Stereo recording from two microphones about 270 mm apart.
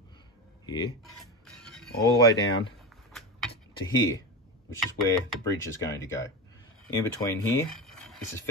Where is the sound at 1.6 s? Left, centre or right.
Centre.